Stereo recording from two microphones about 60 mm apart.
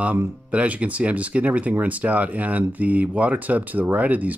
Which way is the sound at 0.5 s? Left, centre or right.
Right.